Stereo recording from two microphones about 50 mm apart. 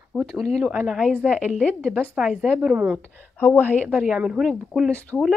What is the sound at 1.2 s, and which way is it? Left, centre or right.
Speech, right.